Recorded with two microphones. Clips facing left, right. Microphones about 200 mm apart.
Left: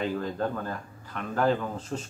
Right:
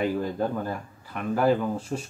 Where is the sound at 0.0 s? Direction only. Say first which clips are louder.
Right 3 dB; 10° right (ahead or behind).